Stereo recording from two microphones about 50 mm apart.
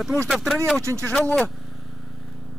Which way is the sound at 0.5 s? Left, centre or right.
Centre.